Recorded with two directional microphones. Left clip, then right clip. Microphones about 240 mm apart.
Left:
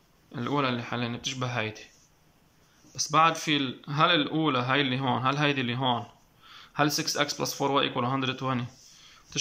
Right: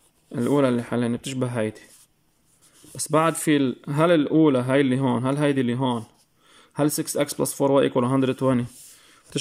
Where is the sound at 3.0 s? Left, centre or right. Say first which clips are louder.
Right 1 dB; right.